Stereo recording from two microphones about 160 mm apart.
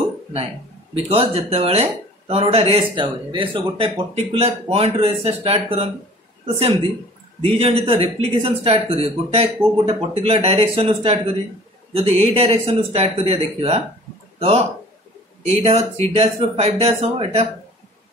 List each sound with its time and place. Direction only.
1.0 s a man's voice: 40° right (ahead or behind)
15.4 s a man's voice: 40° right (ahead or behind)